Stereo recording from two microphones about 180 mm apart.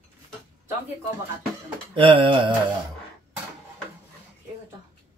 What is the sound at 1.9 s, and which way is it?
Speech, 30° right (ahead or behind).